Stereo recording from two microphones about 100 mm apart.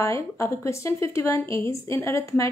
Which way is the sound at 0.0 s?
30° left (ahead or behind).